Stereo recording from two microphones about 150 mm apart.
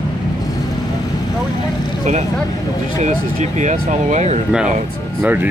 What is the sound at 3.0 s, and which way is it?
Speech, 50° right (ahead or behind).